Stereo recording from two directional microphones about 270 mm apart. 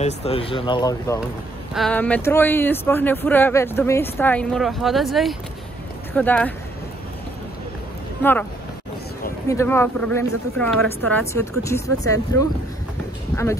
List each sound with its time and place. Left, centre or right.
0.0 s speech: left
1.7 s a woman's voice: centre
8.2 s speech: centre
9.5 s a woman's voice: centre